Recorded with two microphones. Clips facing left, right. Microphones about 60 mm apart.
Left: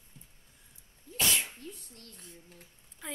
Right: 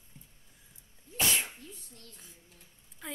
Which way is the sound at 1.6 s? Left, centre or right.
Left.